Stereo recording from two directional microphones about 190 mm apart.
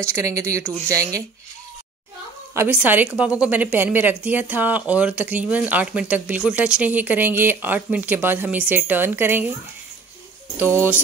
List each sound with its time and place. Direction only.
0.0 s a woman's voice: 15° right (ahead or behind)
2.5 s a woman's voice: 10° right (ahead or behind)
10.6 s a woman's voice: 10° right (ahead or behind)